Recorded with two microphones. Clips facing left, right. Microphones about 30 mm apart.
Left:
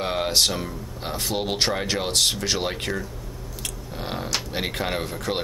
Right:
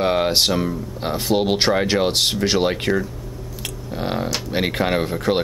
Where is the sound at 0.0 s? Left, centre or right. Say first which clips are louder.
Right 5 dB; centre.